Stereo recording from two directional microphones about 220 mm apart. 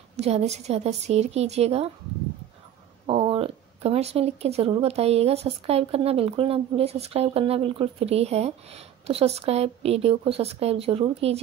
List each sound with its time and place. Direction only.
0.1 s speech: 30° right (ahead or behind)
3.1 s speech: 25° right (ahead or behind)